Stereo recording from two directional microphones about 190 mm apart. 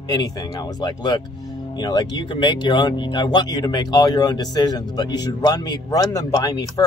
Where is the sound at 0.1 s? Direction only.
20° left (ahead or behind).